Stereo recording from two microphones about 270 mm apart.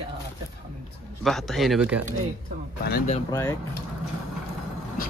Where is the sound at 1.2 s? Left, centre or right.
Centre.